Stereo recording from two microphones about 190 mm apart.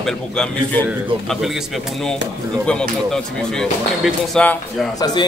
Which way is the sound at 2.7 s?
5° left (ahead or behind).